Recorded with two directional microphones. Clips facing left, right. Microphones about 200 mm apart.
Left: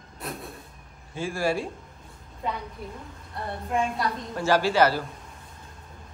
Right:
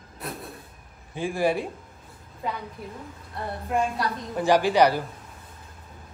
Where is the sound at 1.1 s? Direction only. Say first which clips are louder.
Right 2 dB; 15° right (ahead or behind).